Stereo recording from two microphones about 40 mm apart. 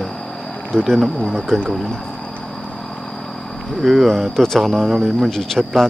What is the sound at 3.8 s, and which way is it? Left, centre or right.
Speech, centre.